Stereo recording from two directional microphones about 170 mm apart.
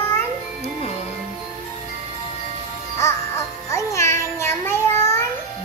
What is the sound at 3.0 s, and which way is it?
Music, 15° left (ahead or behind).